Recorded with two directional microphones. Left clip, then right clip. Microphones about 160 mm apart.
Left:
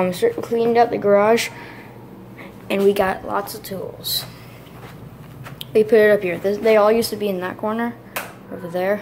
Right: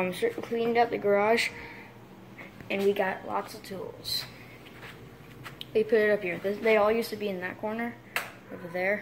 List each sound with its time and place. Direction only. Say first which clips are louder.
0.0 s a woman's voice: left 10 dB; 10° left (ahead or behind)
2.7 s a woman's voice: left 10 dB; 20° left (ahead or behind)
5.6 s a woman's voice: left 11 dB; 20° left (ahead or behind)